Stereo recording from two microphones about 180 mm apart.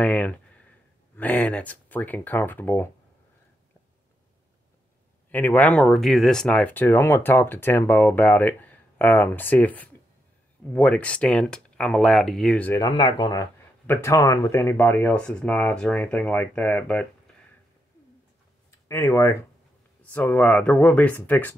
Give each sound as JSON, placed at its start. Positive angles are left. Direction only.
{"t": 0.0, "sound": "speech", "side_deg": 10}
{"t": 5.3, "sound": "speech", "side_deg": 10}
{"t": 12.8, "sound": "speech", "side_deg": 25}
{"t": 18.9, "sound": "speech", "side_deg": 15}